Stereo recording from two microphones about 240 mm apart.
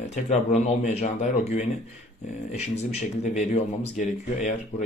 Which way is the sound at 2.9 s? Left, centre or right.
Left.